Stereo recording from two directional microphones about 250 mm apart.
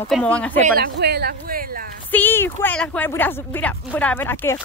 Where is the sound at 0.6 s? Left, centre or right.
Right.